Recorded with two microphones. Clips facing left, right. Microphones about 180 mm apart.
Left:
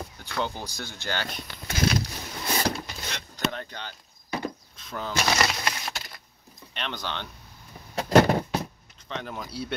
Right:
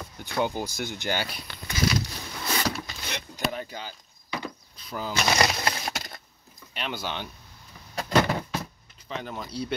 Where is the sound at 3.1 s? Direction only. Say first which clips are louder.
Even; 10° right (ahead or behind).